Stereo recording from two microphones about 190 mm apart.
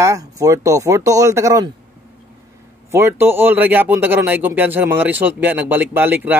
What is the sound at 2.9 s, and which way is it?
Speech, 10° right (ahead or behind).